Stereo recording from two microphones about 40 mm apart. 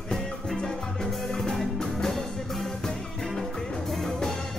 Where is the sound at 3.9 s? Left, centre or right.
Centre.